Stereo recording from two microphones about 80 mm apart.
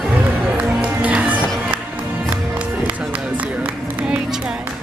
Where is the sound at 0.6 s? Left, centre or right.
Centre.